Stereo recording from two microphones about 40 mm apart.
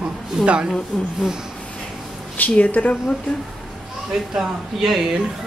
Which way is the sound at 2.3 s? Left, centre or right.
Left.